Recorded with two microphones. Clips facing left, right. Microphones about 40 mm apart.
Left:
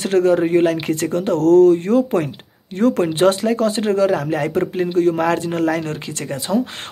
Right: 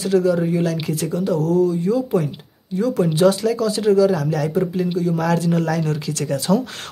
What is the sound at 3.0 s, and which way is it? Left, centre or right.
Speech, left.